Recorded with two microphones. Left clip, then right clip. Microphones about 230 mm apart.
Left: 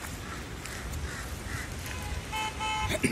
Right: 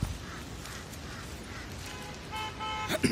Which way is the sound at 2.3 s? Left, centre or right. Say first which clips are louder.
Left 4 dB; left.